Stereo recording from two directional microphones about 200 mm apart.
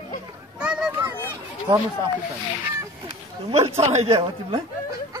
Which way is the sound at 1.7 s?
25° right (ahead or behind).